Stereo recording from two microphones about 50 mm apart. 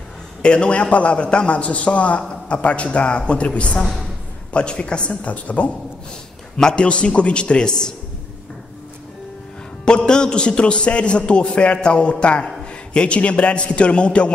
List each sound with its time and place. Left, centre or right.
0.4 s a man's voice: left
6.5 s a man's voice: centre
9.8 s a man's voice: centre